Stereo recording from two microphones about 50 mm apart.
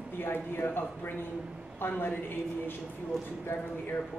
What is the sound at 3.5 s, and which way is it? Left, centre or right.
Speech, left.